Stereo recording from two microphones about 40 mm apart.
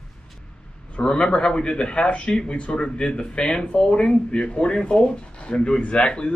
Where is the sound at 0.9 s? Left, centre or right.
Left.